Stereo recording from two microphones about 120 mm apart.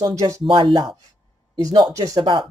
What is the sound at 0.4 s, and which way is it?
Speech, 45° right (ahead or behind).